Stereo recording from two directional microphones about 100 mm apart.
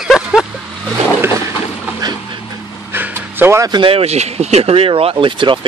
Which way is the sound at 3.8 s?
80° right.